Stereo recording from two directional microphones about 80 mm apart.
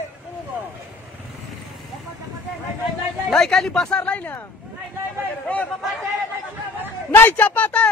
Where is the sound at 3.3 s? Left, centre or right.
Centre.